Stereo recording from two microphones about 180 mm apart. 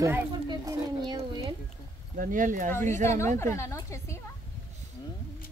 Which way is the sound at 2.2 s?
50° right (ahead or behind).